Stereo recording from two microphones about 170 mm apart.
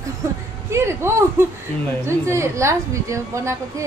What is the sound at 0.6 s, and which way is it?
A woman's voice, 15° right (ahead or behind).